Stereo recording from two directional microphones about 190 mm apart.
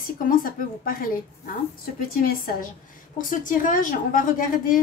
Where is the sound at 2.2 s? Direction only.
50° left (ahead or behind).